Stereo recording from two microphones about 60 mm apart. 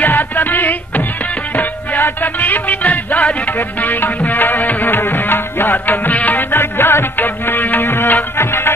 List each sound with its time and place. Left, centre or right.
0.0 s music: left
2.2 s music: left
3.8 s music: left